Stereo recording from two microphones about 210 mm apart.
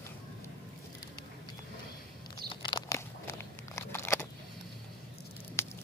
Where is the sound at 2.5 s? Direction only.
20° left (ahead or behind).